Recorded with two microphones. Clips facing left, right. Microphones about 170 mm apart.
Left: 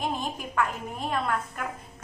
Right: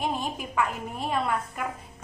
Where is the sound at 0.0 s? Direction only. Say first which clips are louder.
Right 1 dB; 5° right (ahead or behind).